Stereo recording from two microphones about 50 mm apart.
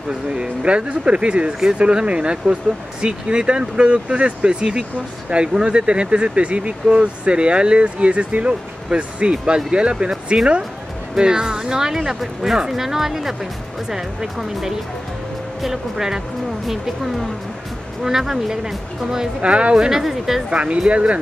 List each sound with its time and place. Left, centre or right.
0.3 s speech: right
19.4 s speech: right; by 20.4 s centre
20.4 s speech: right